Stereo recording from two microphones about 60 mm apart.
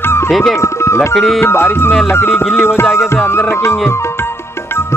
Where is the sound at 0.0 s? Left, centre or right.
Left.